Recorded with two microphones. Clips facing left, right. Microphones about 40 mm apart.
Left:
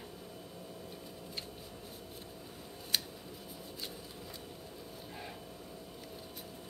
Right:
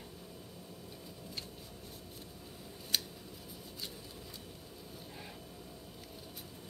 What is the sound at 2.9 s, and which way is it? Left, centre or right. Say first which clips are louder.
Scissors: left 1 dB; centre.